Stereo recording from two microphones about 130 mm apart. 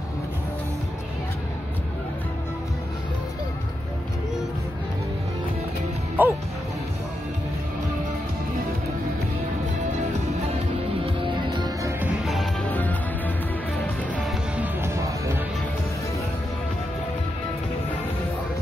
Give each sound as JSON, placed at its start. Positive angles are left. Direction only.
{"t": 6.2, "sound": "music", "side_deg": -15}
{"t": 11.1, "sound": "music", "side_deg": -35}
{"t": 12.6, "sound": "music", "side_deg": 10}
{"t": 14.6, "sound": "music", "side_deg": -20}